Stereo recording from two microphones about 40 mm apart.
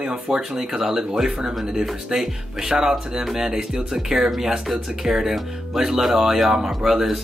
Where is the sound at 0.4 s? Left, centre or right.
Centre.